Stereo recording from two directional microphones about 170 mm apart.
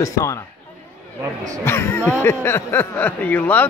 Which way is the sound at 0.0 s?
20° left (ahead or behind).